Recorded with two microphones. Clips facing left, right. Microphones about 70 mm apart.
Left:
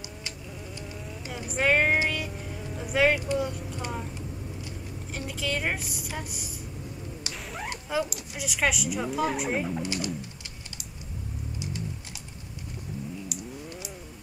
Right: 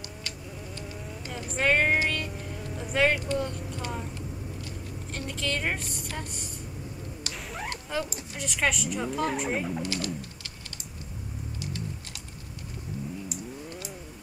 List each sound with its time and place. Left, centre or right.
1.2 s speech: centre
2.0 s music: centre
4.1 s vehicle: centre
7.4 s fowl: centre
7.7 s a sound: centre
8.4 s a woman's voice: centre
9.8 s speech: centre
11.6 s typing: centre